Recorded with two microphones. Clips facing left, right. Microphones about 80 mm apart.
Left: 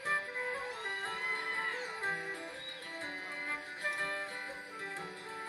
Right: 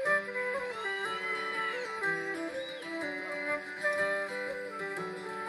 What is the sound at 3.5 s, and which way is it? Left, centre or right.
Music, right.